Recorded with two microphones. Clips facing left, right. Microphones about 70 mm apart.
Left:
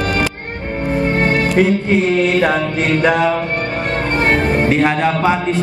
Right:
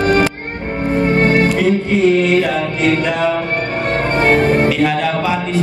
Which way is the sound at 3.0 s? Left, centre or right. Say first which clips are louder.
Left 3 dB; left.